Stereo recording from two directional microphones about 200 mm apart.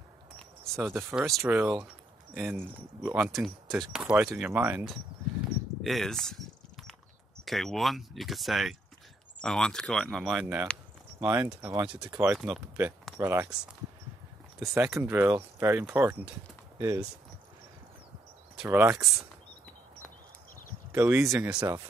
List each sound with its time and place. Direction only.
0.7 s speech: 5° right (ahead or behind)
5.8 s a sound: centre (ahead or behind)
7.4 s speech: centre (ahead or behind)
14.7 s speech: 5° right (ahead or behind)
18.6 s speech: 10° right (ahead or behind)
20.9 s speech: 10° right (ahead or behind)